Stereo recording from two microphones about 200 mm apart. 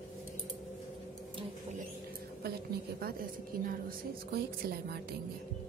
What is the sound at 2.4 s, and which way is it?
A woman's voice, 50° right (ahead or behind).